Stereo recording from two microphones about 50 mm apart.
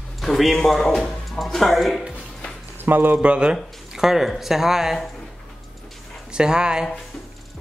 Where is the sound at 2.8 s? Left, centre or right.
Right.